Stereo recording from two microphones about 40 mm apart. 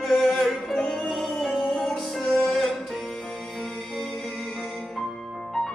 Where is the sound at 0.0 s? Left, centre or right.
Centre.